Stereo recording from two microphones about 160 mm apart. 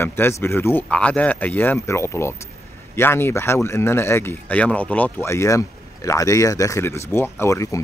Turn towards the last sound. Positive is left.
turn(degrees=20)  # may be behind; listen again after turning